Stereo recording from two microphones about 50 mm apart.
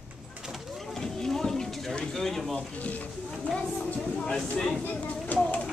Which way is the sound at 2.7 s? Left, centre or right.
Left.